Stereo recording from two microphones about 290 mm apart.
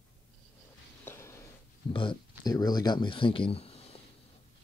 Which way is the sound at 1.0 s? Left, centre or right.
Centre.